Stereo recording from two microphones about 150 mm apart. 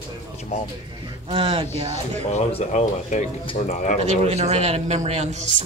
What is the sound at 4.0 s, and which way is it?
A man's voice, 45° right (ahead or behind).